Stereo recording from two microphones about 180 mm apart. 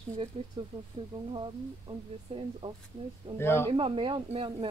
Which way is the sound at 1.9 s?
30° right (ahead or behind).